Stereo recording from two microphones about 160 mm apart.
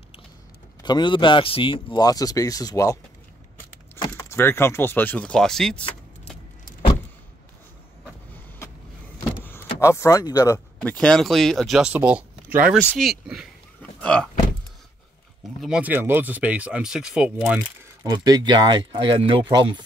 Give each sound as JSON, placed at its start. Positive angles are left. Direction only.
{"t": 0.8, "sound": "speech", "side_deg": 30}
{"t": 9.8, "sound": "speech", "side_deg": 15}
{"t": 10.8, "sound": "speech", "side_deg": 5}
{"t": 12.7, "sound": "speech", "side_deg": 5}
{"t": 15.6, "sound": "speech", "side_deg": -5}
{"t": 18.0, "sound": "speech", "side_deg": -25}